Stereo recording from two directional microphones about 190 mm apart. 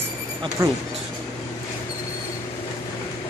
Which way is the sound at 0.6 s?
15° right (ahead or behind).